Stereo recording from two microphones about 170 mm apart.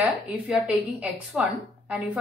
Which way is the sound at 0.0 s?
5° right (ahead or behind).